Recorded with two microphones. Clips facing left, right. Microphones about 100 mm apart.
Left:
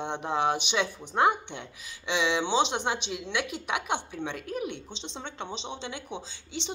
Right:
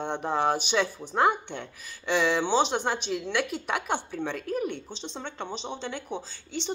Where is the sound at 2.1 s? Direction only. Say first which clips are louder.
Right 2 dB; 45° right (ahead or behind).